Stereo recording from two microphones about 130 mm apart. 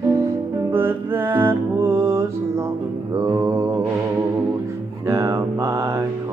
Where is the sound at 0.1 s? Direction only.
20° right (ahead or behind).